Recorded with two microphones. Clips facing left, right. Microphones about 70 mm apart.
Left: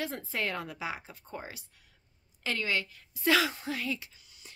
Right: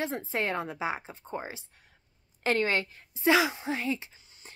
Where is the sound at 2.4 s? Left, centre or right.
Right.